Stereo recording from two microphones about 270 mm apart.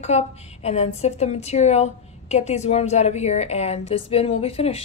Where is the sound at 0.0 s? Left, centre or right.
Left.